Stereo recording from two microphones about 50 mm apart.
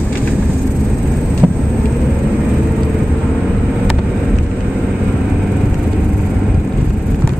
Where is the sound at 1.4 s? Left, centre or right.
Right.